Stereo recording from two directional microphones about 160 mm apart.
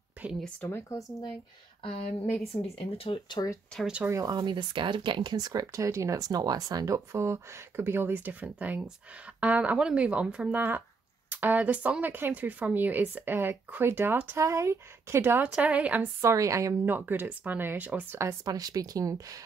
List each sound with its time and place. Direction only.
0.2 s speech: 5° right (ahead or behind)
0.6 s speech: 15° left (ahead or behind)
1.8 s speech: 35° left (ahead or behind)
3.7 s speech: 5° right (ahead or behind)
4.1 s speech: 25° right (ahead or behind)